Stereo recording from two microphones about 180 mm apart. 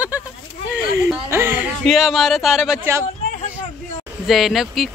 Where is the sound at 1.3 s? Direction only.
10° right (ahead or behind).